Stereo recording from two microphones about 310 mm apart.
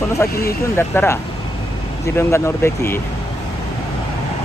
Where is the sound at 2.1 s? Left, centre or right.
Centre.